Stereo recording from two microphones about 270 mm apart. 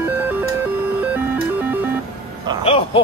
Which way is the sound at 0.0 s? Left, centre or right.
Centre.